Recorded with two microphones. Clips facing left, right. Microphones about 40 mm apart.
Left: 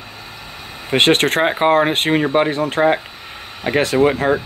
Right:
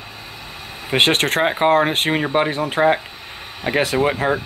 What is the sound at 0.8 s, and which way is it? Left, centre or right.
Speech, centre.